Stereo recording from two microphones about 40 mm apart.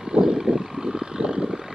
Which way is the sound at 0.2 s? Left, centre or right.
Centre.